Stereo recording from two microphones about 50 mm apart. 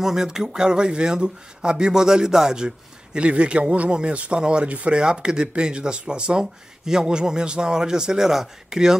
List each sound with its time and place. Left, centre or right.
0.0 s speech: centre